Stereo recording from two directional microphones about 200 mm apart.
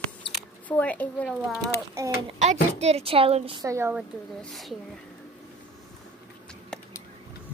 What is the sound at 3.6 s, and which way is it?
Speech, 15° right (ahead or behind).